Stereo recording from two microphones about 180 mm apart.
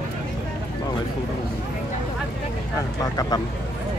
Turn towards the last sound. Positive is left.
turn(degrees=20)  # may be behind; listen again after turning